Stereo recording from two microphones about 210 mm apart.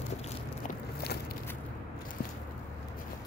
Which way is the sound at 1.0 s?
50° left (ahead or behind).